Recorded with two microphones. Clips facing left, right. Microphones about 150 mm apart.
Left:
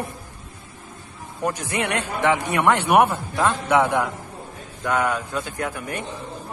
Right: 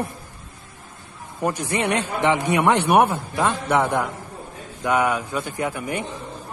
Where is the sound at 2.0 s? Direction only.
20° right (ahead or behind).